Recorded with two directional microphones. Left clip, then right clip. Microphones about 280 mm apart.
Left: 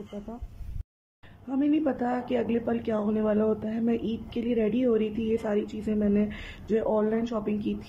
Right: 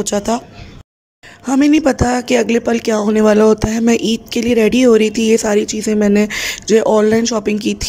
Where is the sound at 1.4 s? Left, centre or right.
Right.